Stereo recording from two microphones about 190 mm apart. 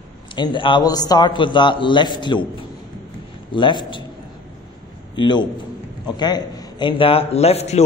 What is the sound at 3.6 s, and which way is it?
Speech, 25° left (ahead or behind).